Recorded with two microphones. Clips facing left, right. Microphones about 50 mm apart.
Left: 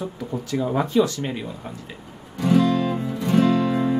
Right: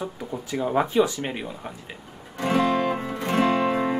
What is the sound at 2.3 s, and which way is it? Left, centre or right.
Music, right.